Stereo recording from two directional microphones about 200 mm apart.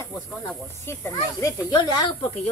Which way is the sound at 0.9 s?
15° left (ahead or behind).